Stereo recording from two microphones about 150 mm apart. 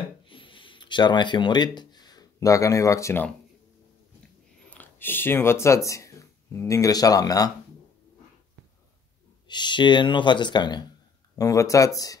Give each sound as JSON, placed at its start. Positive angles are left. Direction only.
{"t": 0.2, "sound": "a sound", "side_deg": 35}
{"t": 4.6, "sound": "speech", "side_deg": 10}
{"t": 9.5, "sound": "speech", "side_deg": 30}